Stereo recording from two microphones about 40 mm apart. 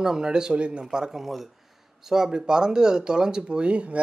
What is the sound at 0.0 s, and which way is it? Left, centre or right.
Speech, centre.